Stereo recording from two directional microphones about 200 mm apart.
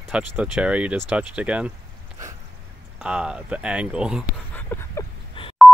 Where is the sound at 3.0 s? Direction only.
5° right (ahead or behind).